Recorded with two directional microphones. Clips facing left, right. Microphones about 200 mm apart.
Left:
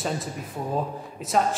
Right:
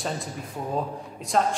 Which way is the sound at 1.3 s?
Centre (ahead or behind).